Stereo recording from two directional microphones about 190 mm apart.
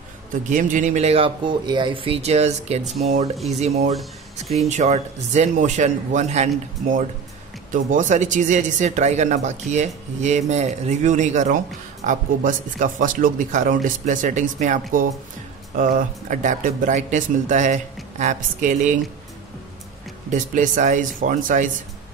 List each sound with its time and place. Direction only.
0.3 s speech: 45° right (ahead or behind)
20.2 s speech: 40° right (ahead or behind)